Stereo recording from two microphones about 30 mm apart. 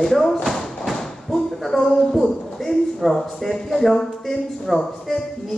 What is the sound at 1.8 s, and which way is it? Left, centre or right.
Speech, left.